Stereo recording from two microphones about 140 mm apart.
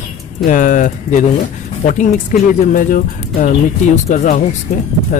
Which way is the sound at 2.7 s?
75° left (ahead or behind).